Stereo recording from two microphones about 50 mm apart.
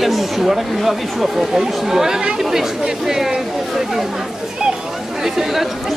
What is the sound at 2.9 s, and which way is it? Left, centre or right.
Speech, centre.